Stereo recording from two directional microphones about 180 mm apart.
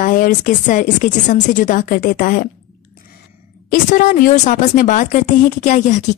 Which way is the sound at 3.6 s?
50° left (ahead or behind).